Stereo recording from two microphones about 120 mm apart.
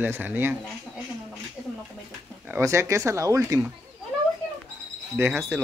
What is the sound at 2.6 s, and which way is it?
Speech, 25° right (ahead or behind).